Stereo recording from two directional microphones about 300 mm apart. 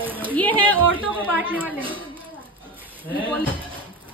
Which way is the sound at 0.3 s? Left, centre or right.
Centre.